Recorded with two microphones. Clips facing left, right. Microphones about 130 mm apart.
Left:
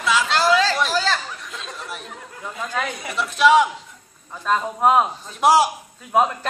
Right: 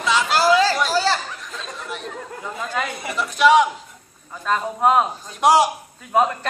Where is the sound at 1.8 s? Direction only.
5° left (ahead or behind).